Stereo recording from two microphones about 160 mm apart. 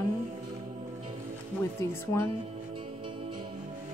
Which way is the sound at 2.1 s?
15° left (ahead or behind).